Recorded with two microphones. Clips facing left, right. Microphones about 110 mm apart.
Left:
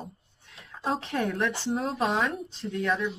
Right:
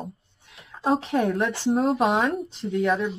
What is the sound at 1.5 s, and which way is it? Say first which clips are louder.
Speech: right 5 dB; 65° right (ahead or behind).